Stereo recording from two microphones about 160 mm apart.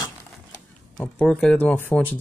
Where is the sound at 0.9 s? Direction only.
5° left (ahead or behind).